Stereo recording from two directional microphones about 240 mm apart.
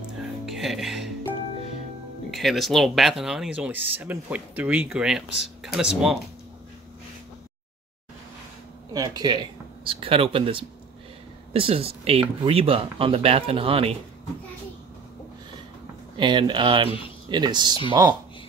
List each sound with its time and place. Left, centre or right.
0.5 s music: centre
2.3 s speech: centre
8.9 s speech: centre
16.2 s speech: centre